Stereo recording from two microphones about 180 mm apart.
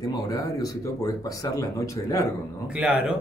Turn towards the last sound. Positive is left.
turn(degrees=-5)  # may be behind; listen again after turning